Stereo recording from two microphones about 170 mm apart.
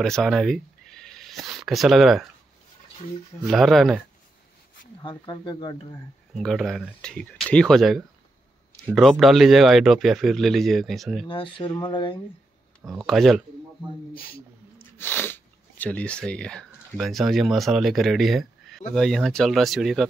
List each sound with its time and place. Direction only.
0.0 s a sound: centre (ahead or behind)
3.4 s speech: centre (ahead or behind)
5.0 s speech: 25° left (ahead or behind)
6.3 s speech: centre (ahead or behind)
11.2 s speech: 30° left (ahead or behind)
12.8 s speech: centre (ahead or behind)
14.1 s speech: 60° left (ahead or behind)
15.0 s speech: 10° left (ahead or behind)